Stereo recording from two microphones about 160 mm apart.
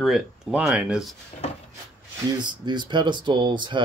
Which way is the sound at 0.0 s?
5° right (ahead or behind).